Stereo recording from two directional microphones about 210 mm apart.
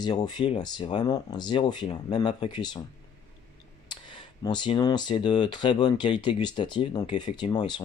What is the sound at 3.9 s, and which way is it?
Speech, 20° left (ahead or behind).